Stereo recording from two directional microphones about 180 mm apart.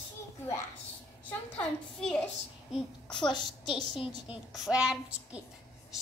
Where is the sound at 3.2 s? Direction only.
25° left (ahead or behind).